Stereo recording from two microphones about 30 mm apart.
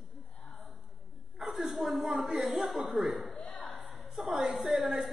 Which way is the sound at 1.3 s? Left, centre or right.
Centre.